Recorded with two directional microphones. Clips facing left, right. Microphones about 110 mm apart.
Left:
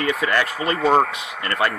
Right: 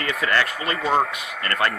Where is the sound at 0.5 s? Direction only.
30° left (ahead or behind).